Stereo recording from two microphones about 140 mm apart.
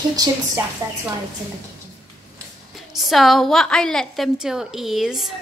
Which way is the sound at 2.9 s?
Centre (ahead or behind).